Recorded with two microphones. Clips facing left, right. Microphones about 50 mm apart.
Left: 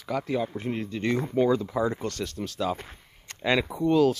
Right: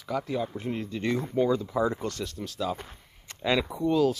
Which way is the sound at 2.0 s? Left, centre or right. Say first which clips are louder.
Left 2 dB; centre.